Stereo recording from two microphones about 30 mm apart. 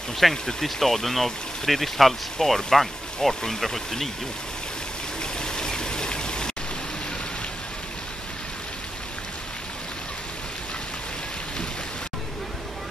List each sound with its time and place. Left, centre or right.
0.5 s speech: centre
5.2 s stream: left